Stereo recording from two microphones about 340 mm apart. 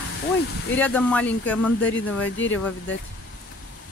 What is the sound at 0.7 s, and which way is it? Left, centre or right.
Speech, centre.